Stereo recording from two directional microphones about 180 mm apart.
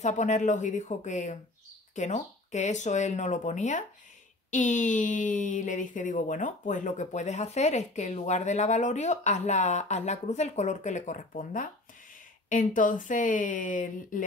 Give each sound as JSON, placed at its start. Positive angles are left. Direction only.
{"t": 0.0, "sound": "speech", "side_deg": 40}